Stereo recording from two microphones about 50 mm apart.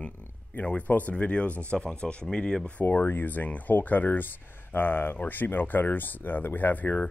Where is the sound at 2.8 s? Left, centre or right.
Left.